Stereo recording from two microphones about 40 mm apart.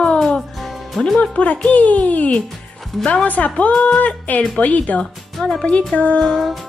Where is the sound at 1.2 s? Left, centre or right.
Left.